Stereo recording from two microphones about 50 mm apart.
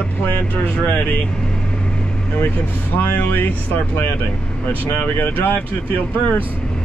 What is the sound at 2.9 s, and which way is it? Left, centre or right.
Speech, left.